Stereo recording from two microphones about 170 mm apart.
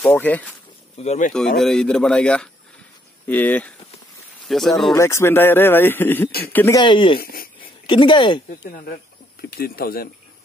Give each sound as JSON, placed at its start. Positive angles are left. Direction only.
{"t": 0.0, "sound": "speech", "side_deg": 10}
{"t": 0.9, "sound": "speech", "side_deg": 40}
{"t": 1.6, "sound": "a man's voice", "side_deg": 5}
{"t": 4.9, "sound": "speech", "side_deg": 15}
{"t": 6.8, "sound": "speech", "side_deg": 30}
{"t": 8.5, "sound": "speech", "side_deg": 50}